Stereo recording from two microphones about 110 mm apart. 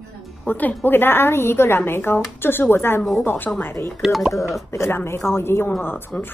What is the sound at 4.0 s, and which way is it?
Speech, centre (ahead or behind).